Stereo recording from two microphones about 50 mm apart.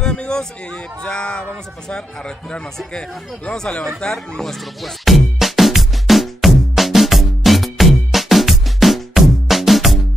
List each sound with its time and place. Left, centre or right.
0.0 s a sound: centre
1.0 s speech: centre
4.1 s music: centre